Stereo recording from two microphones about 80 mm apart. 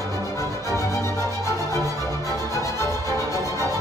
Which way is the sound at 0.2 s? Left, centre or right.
Left.